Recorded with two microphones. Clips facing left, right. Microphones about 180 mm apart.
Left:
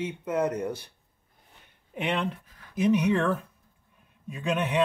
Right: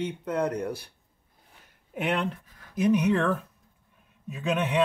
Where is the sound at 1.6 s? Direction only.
5° right (ahead or behind).